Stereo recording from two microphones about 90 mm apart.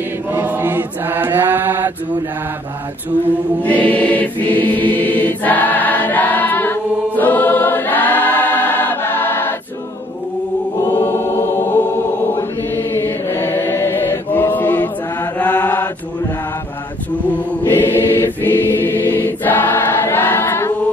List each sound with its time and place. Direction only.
0.3 s chant: 25° right (ahead or behind)
3.6 s choir: 15° left (ahead or behind)
11.0 s chant: 25° left (ahead or behind)
17.6 s choir: 25° left (ahead or behind)